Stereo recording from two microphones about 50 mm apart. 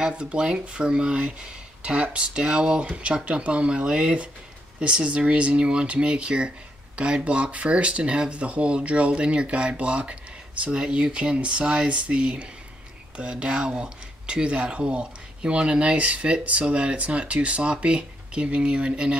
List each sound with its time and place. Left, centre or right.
0.1 s speech: right